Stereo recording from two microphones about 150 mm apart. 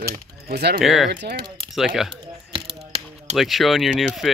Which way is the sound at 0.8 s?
Centre (ahead or behind).